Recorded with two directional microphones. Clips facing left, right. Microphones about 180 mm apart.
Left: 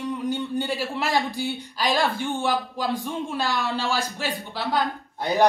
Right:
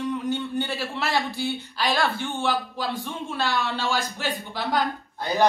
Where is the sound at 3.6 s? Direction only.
35° left (ahead or behind).